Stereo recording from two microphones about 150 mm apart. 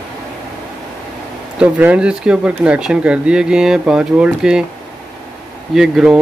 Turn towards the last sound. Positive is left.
turn(degrees=-5)  # may be behind; listen again after turning